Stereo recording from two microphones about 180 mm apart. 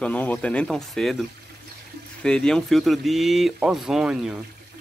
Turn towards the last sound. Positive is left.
turn(degrees=-5)  # may be behind; listen again after turning